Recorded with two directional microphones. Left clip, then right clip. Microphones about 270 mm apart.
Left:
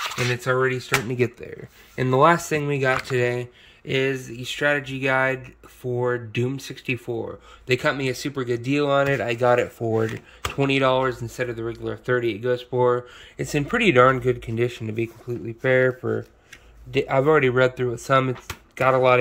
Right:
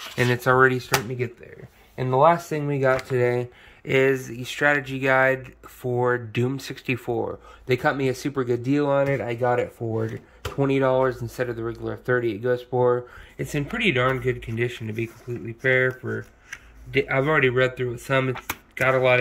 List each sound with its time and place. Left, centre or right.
0.4 s speech: centre
0.8 s speech: centre
2.6 s speech: centre
10.6 s speech: centre
13.5 s speech: centre